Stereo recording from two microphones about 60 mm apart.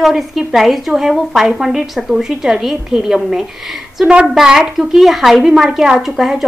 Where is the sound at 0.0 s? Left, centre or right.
Centre.